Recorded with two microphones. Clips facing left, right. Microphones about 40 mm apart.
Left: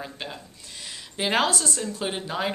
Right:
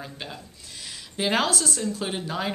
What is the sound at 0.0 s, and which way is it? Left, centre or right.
Speech, centre.